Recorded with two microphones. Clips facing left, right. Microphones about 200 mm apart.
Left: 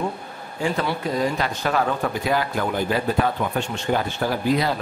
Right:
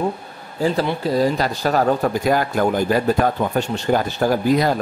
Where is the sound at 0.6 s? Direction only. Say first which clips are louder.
Right 4 dB; 35° right (ahead or behind).